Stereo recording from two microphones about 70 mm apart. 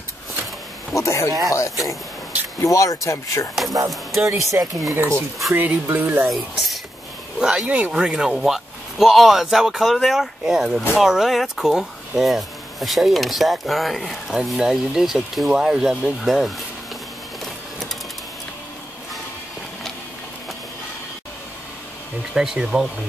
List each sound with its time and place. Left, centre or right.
0.9 s speech: left
3.9 s speech: centre
4.4 s speech: right
5.5 s speech: right
6.2 s speech: centre
22.3 s speech: centre